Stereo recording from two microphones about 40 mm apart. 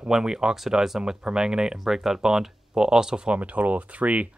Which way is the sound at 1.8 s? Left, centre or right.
Centre.